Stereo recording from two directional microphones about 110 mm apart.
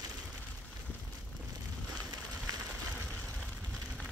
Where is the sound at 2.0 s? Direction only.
35° right (ahead or behind).